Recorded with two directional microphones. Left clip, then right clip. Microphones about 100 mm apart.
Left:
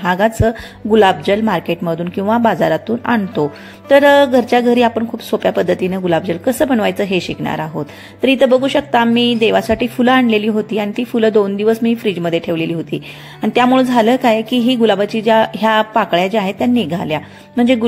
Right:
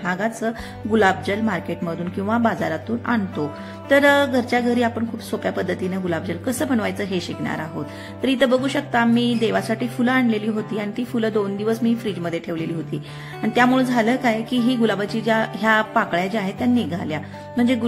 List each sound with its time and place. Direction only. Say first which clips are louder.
0.0 s a woman's voice: left 10 dB; 55° left (ahead or behind)